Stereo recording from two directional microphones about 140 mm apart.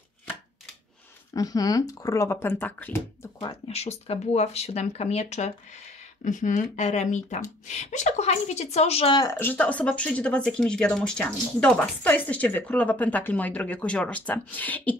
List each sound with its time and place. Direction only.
1.3 s speech: 25° left (ahead or behind)
3.6 s speech: 50° left (ahead or behind)
6.2 s speech: 65° left (ahead or behind); by 9.1 s 45° left (ahead or behind)
9.1 s speech: 30° left (ahead or behind)
9.4 s speech: 10° left (ahead or behind)